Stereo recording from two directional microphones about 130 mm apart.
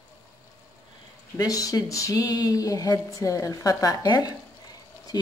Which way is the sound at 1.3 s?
25° left (ahead or behind).